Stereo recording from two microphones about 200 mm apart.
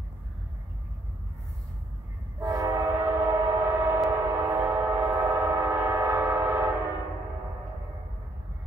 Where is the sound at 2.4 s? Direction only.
15° right (ahead or behind).